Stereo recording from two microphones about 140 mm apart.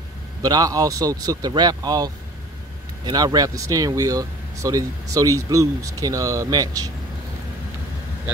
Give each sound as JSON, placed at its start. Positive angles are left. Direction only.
{"t": 0.4, "sound": "speech", "side_deg": -25}